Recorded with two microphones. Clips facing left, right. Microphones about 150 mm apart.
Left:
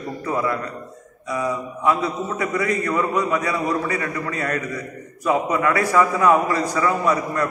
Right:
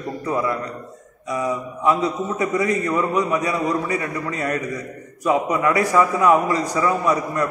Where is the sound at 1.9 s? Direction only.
20° right (ahead or behind).